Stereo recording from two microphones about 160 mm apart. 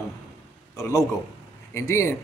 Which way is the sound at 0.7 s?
20° left (ahead or behind).